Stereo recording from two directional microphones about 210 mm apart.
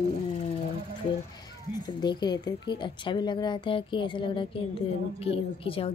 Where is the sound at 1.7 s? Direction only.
20° left (ahead or behind).